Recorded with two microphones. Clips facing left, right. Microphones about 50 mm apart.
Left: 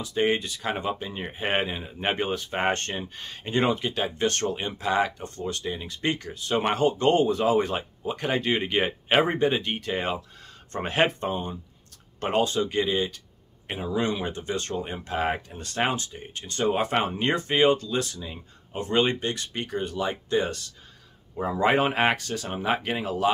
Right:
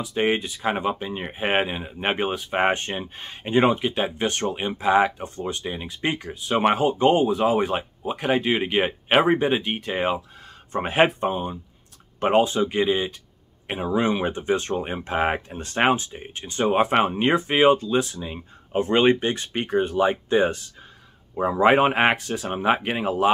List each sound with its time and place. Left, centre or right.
0.0 s speech: centre
13.7 s speech: right